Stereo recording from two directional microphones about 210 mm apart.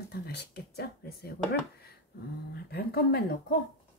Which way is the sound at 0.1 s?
50° left (ahead or behind).